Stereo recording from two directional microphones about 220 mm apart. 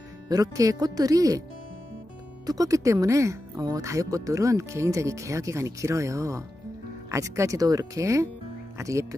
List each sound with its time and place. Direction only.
0.3 s speech: 15° right (ahead or behind)
2.4 s speech: 15° right (ahead or behind)